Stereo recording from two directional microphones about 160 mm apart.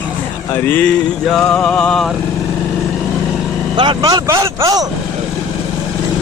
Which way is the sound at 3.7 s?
30° right (ahead or behind).